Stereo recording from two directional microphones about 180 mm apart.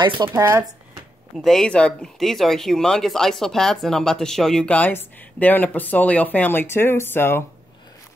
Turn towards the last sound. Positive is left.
turn(degrees=10)  # may be behind; listen again after turning